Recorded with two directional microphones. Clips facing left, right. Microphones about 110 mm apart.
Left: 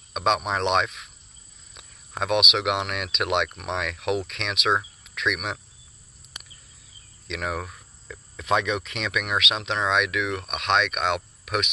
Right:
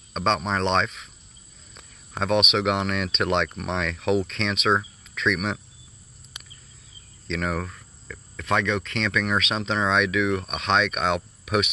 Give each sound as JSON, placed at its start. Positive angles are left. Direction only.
{"t": 0.1, "sound": "speech", "side_deg": 10}
{"t": 7.2, "sound": "speech", "side_deg": 5}